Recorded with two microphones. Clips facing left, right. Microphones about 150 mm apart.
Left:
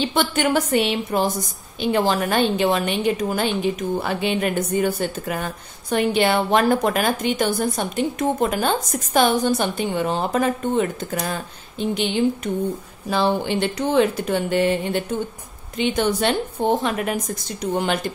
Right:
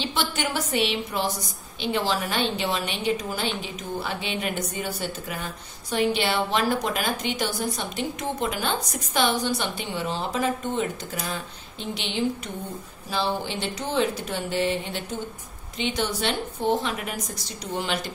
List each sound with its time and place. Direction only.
0.0 s a woman's voice: 55° left (ahead or behind)